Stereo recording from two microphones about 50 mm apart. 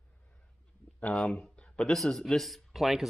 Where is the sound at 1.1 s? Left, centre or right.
Centre.